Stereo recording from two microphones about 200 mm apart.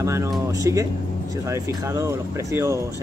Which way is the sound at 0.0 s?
15° right (ahead or behind).